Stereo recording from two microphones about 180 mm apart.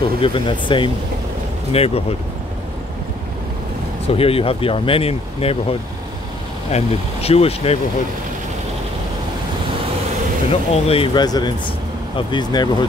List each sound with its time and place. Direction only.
0.0 s speech: 30° left (ahead or behind)
4.1 s speech: 30° left (ahead or behind)
10.5 s speech: 30° left (ahead or behind)